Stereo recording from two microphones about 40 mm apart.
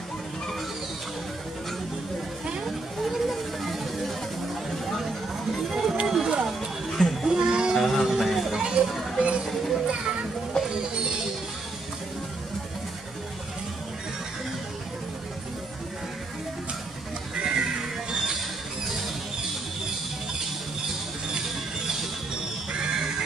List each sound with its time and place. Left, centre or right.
2.6 s a sound: centre
4.8 s vehicle: centre
5.7 s music: centre
6.0 s a sound: centre
7.7 s music: centre
8.8 s children playing: right
10.6 s music: centre
17.4 s music: right